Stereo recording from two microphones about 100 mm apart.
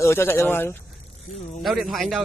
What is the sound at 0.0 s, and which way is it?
Speech, 25° left (ahead or behind).